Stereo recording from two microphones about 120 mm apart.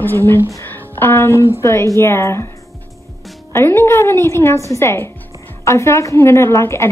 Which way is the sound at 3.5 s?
20° left (ahead or behind).